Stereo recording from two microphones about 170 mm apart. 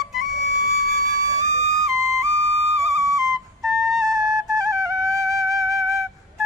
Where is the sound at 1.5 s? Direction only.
40° right (ahead or behind).